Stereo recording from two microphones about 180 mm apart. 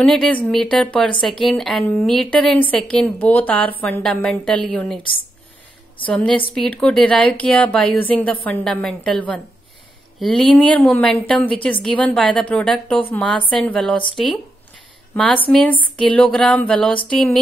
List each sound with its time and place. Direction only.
0.0 s a woman's voice: 5° left (ahead or behind)
6.0 s a woman's voice: 5° left (ahead or behind)